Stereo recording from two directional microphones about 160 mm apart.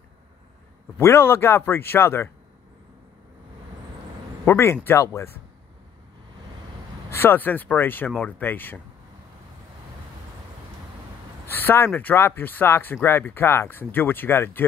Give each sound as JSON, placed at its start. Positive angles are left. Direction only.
{"t": 0.9, "sound": "speech", "side_deg": 15}
{"t": 4.5, "sound": "speech", "side_deg": 15}
{"t": 7.1, "sound": "speech", "side_deg": 15}
{"t": 11.4, "sound": "speech", "side_deg": 15}